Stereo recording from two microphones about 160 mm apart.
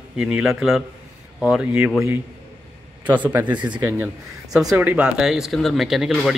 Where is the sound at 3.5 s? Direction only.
30° right (ahead or behind).